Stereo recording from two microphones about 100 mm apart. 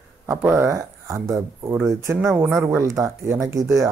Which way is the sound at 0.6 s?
35° right (ahead or behind).